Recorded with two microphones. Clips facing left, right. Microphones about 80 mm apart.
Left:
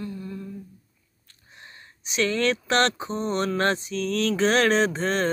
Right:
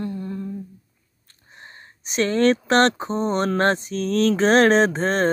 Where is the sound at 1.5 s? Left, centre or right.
Right.